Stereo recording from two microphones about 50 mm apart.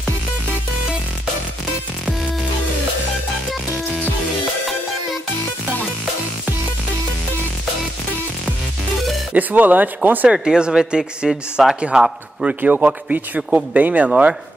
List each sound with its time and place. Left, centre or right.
9.3 s speech: right
10.2 s speech: centre
12.4 s speech: right